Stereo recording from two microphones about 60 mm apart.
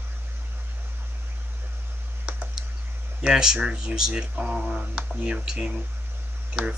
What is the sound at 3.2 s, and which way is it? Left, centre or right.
Speech, centre.